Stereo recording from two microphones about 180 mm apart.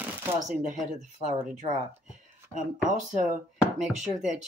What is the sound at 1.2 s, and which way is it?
Speech, 40° right (ahead or behind).